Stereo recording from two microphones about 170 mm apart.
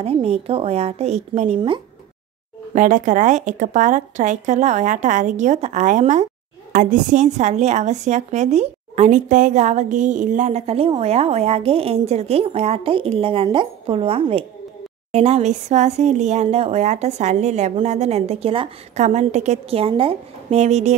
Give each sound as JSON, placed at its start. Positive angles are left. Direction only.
{"t": 0.0, "sound": "a woman's voice", "side_deg": -35}
{"t": 2.7, "sound": "a woman's voice", "side_deg": -45}